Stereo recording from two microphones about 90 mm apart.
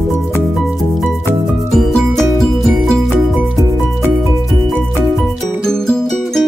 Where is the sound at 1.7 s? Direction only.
5° left (ahead or behind).